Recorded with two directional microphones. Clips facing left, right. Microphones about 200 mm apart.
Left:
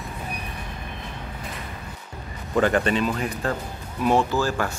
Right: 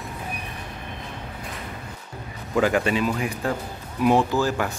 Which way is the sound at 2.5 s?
10° right (ahead or behind).